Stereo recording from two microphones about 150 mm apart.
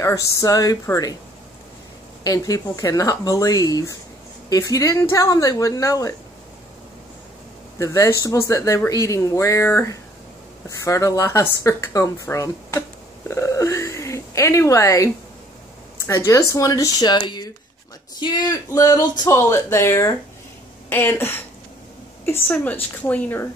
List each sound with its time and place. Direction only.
0.0 s speech: 20° left (ahead or behind)
2.2 s speech: 25° left (ahead or behind)
7.8 s speech: 20° left (ahead or behind)
13.3 s a sound: 20° left (ahead or behind)
16.1 s a woman's voice: 20° left (ahead or behind)